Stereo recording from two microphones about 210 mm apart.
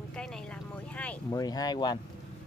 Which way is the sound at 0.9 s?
5° left (ahead or behind).